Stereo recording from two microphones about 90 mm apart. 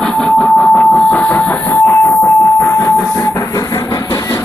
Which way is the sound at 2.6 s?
30° left (ahead or behind).